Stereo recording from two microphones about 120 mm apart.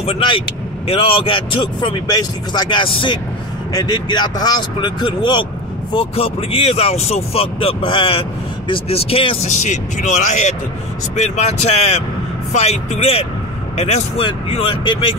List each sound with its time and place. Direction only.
0.0 s speech: 50° left (ahead or behind)
2.0 s speech: 35° left (ahead or behind)
5.9 s speech: 55° left (ahead or behind)
9.6 s speech: 80° left
11.1 s speech: 65° left (ahead or behind)
14.2 s speech: 50° left (ahead or behind)